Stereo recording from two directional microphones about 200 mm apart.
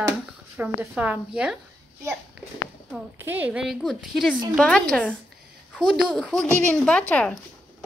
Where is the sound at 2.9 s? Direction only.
10° right (ahead or behind).